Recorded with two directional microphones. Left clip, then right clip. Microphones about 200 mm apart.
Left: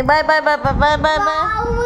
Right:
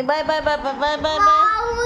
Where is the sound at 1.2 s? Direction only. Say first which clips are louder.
Right 3 dB; 30° right (ahead or behind).